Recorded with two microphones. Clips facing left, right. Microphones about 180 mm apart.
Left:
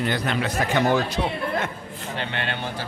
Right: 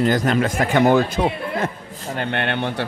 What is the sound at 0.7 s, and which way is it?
A man's voice, 55° right (ahead or behind).